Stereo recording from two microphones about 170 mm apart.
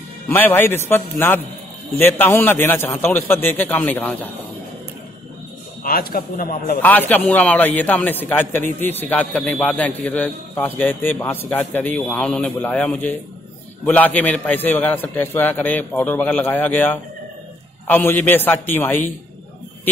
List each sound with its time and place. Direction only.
0.3 s speech: 10° left (ahead or behind)
5.9 s a man's voice: 60° left (ahead or behind)
6.8 s speech: 10° left (ahead or behind)